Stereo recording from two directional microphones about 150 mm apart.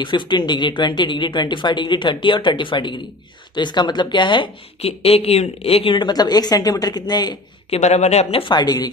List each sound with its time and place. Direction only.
0.0 s a woman's voice: 30° left (ahead or behind)
7.7 s speech: 50° left (ahead or behind); by 8.8 s 25° left (ahead or behind)